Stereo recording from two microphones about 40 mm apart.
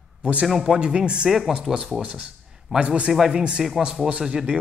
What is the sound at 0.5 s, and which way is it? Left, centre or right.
Speech, centre.